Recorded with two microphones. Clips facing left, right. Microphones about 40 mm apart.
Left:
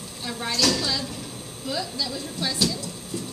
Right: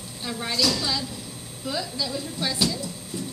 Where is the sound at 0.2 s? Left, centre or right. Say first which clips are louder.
Even; centre.